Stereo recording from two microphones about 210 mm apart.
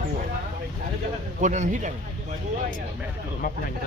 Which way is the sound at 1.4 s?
35° right (ahead or behind).